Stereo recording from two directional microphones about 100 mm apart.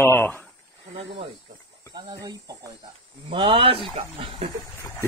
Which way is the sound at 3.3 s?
60° right (ahead or behind).